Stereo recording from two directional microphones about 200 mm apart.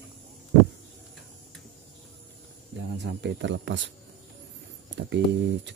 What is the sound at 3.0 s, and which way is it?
Speech, 60° right (ahead or behind).